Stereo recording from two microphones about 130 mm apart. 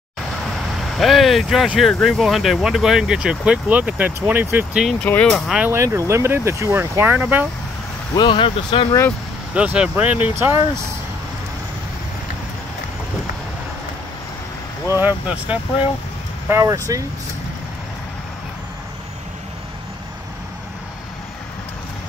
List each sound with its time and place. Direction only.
0.7 s speech: centre (ahead or behind)
5.0 s speech: 10° left (ahead or behind)
5.7 s speech: 20° right (ahead or behind)
8.1 s speech: 35° left (ahead or behind)
9.5 s speech: 10° right (ahead or behind)
15.0 s speech: 15° right (ahead or behind)
16.4 s speech: 25° right (ahead or behind)